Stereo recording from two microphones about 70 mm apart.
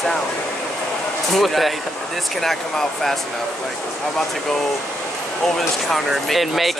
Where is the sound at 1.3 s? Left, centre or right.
Centre.